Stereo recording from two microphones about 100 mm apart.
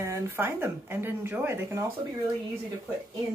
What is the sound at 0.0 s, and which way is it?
A woman's voice, 25° right (ahead or behind).